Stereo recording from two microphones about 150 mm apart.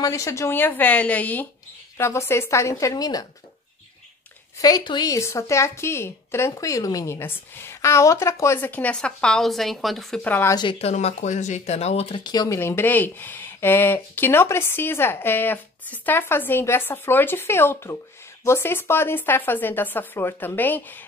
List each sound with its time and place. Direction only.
0.0 s a woman's voice: 20° left (ahead or behind)
4.6 s a woman's voice: 25° left (ahead or behind); by 10.5 s 10° left (ahead or behind)
10.5 s speech: 35° left (ahead or behind)
12.2 s a woman's voice: 25° left (ahead or behind)
12.5 s a woman's voice: 15° left (ahead or behind)